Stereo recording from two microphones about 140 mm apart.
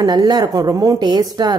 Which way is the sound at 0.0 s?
30° right (ahead or behind).